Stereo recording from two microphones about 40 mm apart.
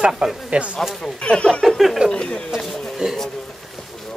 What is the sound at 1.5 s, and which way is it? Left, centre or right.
Speech, centre.